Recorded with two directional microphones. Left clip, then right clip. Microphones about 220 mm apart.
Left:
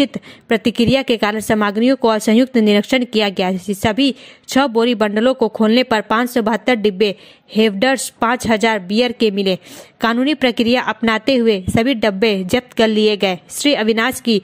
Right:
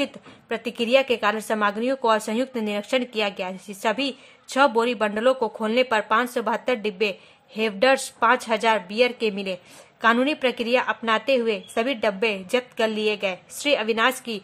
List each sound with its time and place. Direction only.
0.0 s a woman's voice: 30° left (ahead or behind)